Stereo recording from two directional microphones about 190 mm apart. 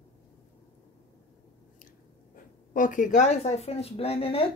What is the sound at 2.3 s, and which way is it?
Speech, 45° left (ahead or behind).